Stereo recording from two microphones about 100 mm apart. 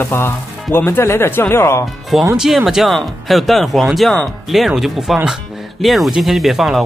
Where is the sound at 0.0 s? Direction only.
25° left (ahead or behind).